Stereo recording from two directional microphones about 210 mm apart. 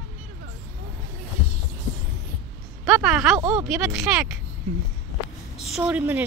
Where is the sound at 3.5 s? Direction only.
5° right (ahead or behind).